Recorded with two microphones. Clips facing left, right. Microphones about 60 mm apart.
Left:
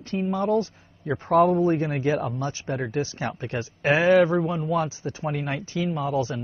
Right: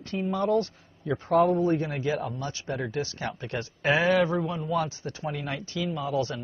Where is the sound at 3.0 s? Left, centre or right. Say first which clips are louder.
Left 4 dB; left.